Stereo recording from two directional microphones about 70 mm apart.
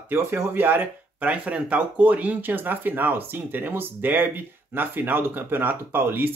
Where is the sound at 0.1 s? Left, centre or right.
Right.